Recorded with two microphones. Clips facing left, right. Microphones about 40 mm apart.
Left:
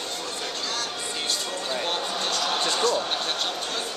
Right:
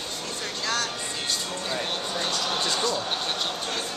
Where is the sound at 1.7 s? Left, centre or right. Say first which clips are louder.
Left 2 dB; centre.